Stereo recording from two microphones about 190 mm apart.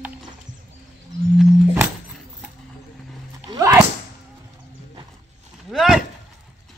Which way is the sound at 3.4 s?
15° right (ahead or behind).